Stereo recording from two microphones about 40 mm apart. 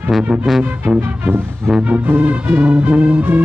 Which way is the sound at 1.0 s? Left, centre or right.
Right.